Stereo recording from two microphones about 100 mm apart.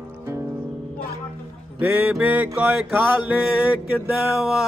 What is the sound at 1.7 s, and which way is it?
Music, 15° right (ahead or behind).